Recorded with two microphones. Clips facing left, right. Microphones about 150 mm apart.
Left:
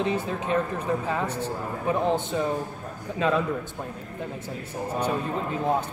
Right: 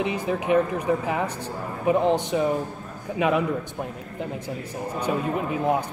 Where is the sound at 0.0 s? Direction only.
15° right (ahead or behind).